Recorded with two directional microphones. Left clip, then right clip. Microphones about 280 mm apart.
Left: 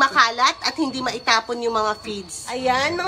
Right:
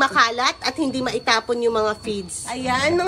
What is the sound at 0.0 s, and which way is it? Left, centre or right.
A woman's voice, centre.